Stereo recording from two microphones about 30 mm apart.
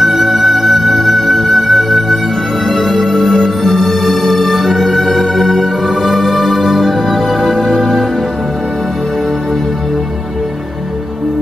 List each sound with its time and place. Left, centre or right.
0.0 s music: centre